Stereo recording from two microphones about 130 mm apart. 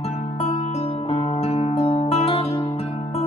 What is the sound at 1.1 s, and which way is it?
Music, 45° left (ahead or behind).